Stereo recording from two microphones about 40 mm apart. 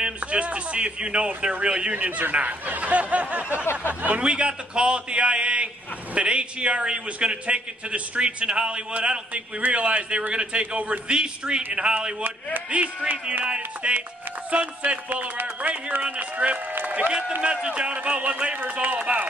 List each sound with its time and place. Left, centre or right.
0.0 s a man's voice: right
2.0 s speech: right
4.2 s a man's voice: right
16.0 s speech: right
17.4 s a man's voice: right
18.6 s speech: right
18.9 s speech: right